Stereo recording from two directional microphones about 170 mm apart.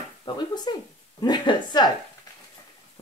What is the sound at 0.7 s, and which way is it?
Speech, 25° left (ahead or behind).